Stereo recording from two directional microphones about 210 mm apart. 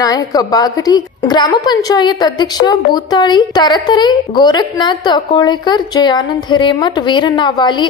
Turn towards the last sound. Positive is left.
turn(degrees=20)  # may be behind; listen again after turning